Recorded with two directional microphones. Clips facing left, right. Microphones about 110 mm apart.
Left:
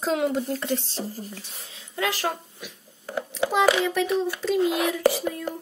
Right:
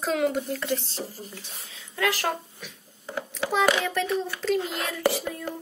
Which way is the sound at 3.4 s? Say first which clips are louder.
Left 3 dB; 15° left (ahead or behind).